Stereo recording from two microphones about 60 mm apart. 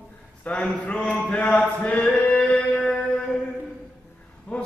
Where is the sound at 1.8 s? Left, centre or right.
Centre.